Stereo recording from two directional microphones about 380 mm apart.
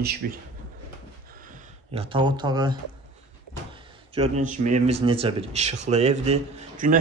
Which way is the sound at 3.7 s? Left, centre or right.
Centre.